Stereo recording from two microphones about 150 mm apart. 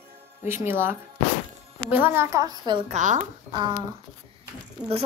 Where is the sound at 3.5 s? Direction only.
30° right (ahead or behind).